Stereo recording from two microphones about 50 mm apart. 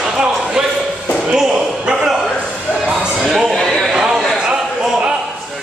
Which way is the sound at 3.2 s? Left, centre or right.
Centre.